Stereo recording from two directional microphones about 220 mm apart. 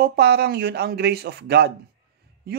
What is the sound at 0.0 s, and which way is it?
A man's voice, 45° right (ahead or behind).